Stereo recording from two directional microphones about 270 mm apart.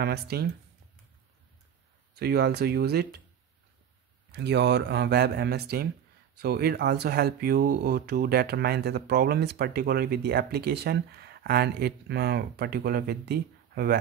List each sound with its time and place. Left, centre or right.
0.0 s speech: right
2.1 s speech: right
4.3 s speech: right